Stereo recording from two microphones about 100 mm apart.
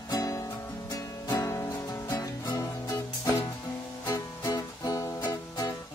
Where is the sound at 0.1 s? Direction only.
40° left (ahead or behind).